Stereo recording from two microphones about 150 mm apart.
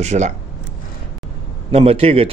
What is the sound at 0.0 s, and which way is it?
Speech, 50° right (ahead or behind).